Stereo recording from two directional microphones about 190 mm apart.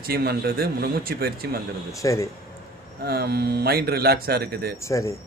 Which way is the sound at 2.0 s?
15° left (ahead or behind).